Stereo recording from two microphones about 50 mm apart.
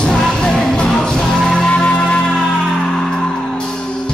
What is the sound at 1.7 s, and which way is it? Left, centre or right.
Music, left.